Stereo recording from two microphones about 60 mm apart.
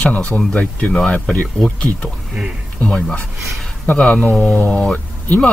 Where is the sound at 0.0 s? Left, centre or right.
Left.